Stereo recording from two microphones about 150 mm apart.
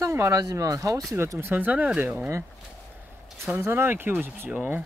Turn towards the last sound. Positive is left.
turn(degrees=-15)  # may be behind; listen again after turning